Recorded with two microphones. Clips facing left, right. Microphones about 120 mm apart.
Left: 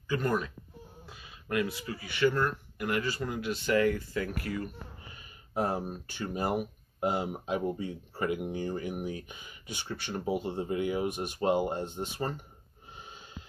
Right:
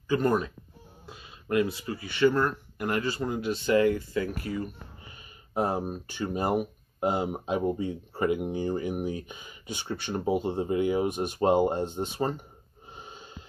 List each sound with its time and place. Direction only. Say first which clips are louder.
0.1 s speech: right 5 dB; 25° right (ahead or behind)
12.9 s snort: right 3 dB; 30° right (ahead or behind)